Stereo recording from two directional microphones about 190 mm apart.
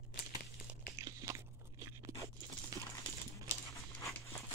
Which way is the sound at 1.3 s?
15° right (ahead or behind).